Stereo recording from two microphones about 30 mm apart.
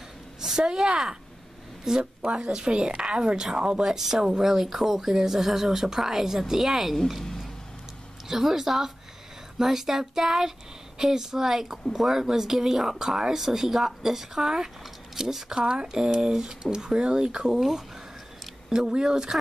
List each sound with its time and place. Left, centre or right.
0.4 s a sound: centre
0.8 s speech: right
2.2 s speech: right
3.8 s speech: centre
8.3 s speech: centre
14.4 s speech: right
15.5 s speech: right
17.6 s speech: centre
18.7 s speech: right